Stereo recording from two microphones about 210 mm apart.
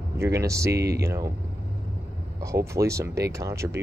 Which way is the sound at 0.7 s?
50° right (ahead or behind).